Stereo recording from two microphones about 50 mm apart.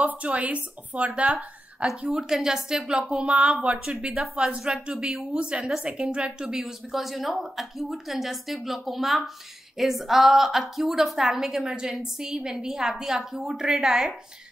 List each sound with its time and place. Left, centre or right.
0.0 s a woman's voice: right
2.0 s a woman's voice: centre
2.9 s a woman's voice: right
6.6 s a woman's voice: centre